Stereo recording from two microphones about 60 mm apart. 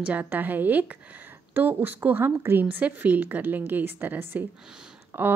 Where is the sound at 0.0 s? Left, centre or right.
Right.